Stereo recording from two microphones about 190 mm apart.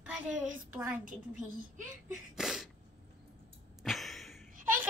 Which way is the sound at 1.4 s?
45° right (ahead or behind).